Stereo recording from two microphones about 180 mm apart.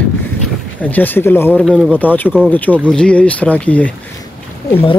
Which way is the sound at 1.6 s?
Centre (ahead or behind).